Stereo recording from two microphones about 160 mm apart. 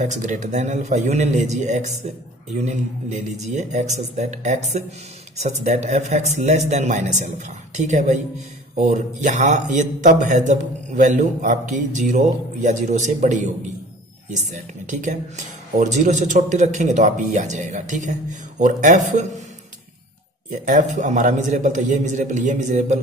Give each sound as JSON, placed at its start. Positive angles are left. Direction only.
{"t": 0.0, "sound": "speech", "side_deg": -50}
{"t": 20.6, "sound": "speech", "side_deg": -50}